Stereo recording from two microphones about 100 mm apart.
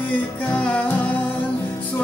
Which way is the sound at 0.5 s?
15° left (ahead or behind).